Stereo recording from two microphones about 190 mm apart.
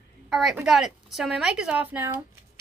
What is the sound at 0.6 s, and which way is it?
Speech, centre (ahead or behind).